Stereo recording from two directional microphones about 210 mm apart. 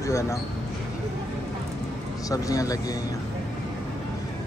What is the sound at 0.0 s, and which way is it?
Speech, 15° left (ahead or behind).